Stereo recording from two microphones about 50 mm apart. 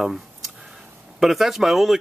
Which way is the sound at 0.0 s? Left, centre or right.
Centre.